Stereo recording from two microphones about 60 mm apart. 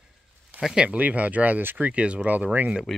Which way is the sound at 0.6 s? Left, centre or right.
Centre.